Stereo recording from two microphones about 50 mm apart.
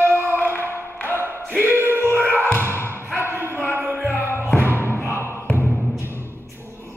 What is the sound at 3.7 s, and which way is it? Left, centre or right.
Music, right.